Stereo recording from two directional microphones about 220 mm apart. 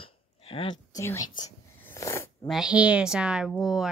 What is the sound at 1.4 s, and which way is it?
Snort, 10° left (ahead or behind).